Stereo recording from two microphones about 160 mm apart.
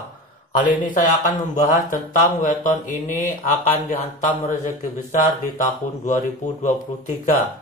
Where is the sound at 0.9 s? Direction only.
55° left (ahead or behind).